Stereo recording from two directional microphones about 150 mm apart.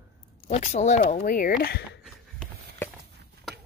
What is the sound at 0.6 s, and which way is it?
Speech, 50° left (ahead or behind).